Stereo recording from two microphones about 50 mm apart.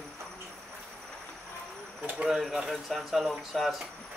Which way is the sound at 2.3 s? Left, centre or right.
Centre.